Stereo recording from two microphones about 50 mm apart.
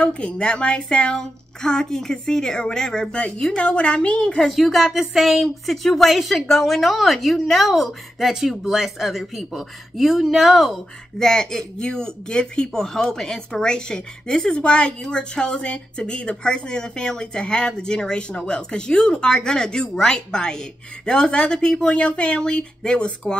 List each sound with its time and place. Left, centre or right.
0.0 s a woman's voice: centre
4.5 s speech: centre
11.2 s a woman's voice: centre
21.9 s speech: left